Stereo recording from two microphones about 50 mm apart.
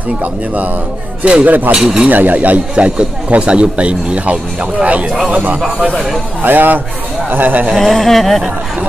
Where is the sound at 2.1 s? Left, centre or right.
Right.